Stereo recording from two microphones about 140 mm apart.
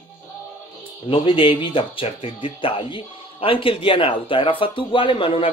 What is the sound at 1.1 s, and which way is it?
A man's voice, 40° left (ahead or behind).